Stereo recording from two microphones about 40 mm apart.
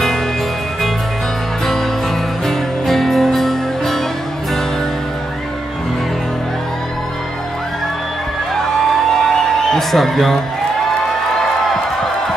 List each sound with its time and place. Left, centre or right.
2.4 s music: centre
9.1 s music: centre